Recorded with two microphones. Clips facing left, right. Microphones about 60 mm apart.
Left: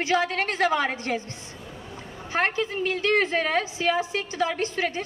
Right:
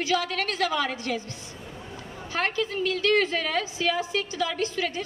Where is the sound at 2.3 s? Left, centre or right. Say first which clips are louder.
Left 2 dB; left.